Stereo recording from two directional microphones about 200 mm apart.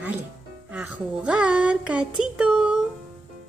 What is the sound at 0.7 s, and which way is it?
Speech, 5° right (ahead or behind).